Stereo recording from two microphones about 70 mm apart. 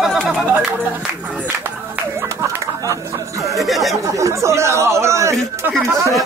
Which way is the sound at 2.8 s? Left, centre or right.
Right.